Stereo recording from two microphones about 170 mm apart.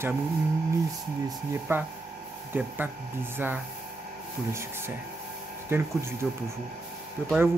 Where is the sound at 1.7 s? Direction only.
15° right (ahead or behind).